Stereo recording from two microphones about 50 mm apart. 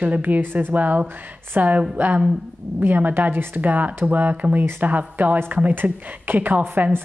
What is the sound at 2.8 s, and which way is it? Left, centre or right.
Speech, right.